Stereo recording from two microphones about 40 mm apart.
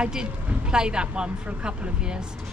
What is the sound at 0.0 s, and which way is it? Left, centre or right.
A man's voice, centre.